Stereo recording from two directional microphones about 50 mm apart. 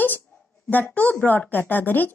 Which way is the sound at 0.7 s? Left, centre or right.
Left.